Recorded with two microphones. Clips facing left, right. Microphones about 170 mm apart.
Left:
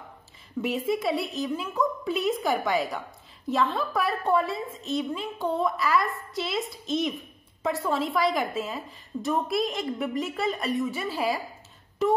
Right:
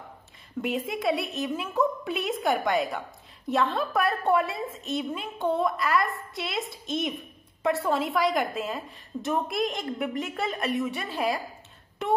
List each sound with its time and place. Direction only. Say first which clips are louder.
0.6 s a woman's voice: left 3 dB; centre (ahead or behind)